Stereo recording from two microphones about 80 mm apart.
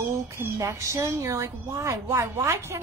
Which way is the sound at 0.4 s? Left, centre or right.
Right.